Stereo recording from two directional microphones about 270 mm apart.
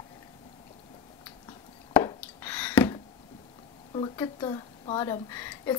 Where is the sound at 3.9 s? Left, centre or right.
Centre.